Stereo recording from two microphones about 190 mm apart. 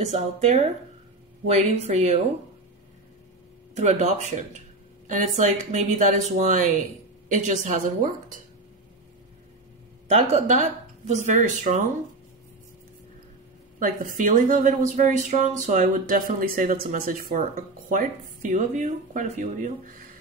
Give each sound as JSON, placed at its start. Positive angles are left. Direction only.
{"t": 0.0, "sound": "speech", "side_deg": -35}
{"t": 1.9, "sound": "speech", "side_deg": -35}
{"t": 3.7, "sound": "speech", "side_deg": -35}
{"t": 10.0, "sound": "speech", "side_deg": -35}
{"t": 13.7, "sound": "speech", "side_deg": -45}